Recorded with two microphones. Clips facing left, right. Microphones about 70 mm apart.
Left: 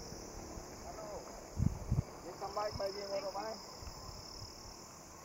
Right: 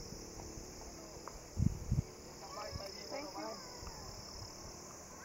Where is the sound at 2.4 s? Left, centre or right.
Left.